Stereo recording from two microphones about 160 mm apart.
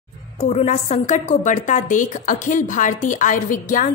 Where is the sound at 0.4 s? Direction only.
40° left (ahead or behind).